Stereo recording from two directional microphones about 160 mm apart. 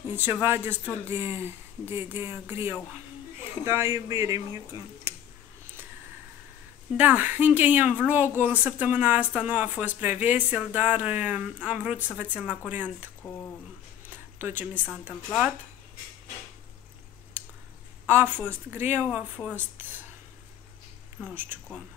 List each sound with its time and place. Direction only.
0.1 s speech: 10° right (ahead or behind)
7.0 s speech: 10° right (ahead or behind)
14.1 s speech: 10° right (ahead or behind)
18.0 s speech: 15° right (ahead or behind)
21.2 s speech: 15° right (ahead or behind)